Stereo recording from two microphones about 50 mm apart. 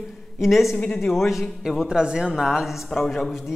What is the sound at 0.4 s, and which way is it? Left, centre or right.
A man's voice, centre.